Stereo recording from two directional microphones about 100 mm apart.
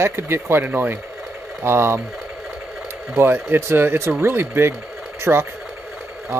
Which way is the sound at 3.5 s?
25° right (ahead or behind).